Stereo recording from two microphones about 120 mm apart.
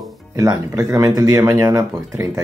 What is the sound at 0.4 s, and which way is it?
Speech, 30° right (ahead or behind).